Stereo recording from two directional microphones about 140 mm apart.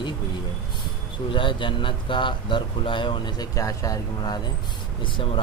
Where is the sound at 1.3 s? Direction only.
35° left (ahead or behind).